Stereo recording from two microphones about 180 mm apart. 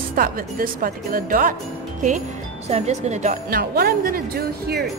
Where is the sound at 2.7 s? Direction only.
35° right (ahead or behind).